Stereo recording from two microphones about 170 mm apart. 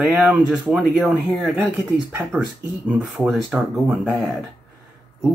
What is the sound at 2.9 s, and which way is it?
Speech, 5° right (ahead or behind).